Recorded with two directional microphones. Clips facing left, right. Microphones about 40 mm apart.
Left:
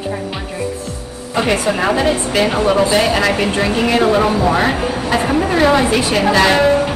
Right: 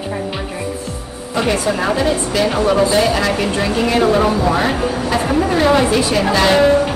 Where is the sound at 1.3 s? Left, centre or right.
Left.